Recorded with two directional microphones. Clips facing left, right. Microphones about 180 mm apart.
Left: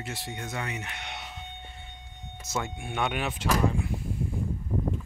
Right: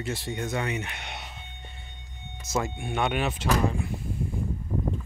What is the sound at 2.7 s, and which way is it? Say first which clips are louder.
Speech: right 3 dB; centre (ahead or behind).